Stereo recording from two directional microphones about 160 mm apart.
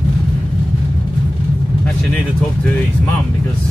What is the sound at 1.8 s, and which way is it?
Speech, 5° left (ahead or behind).